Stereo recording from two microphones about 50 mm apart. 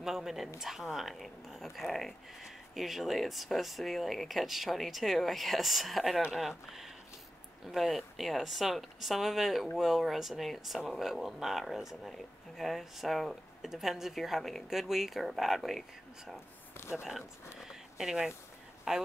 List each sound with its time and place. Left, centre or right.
0.0 s speech: centre
7.6 s speech: centre
16.7 s speech: left
17.6 s a sound: centre
18.9 s speech: centre